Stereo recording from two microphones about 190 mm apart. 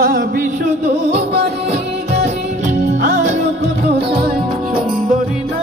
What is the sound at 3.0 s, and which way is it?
Music, 40° right (ahead or behind).